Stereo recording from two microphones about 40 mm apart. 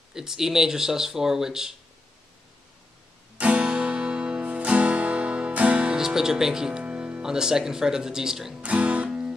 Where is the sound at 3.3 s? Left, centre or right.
Right.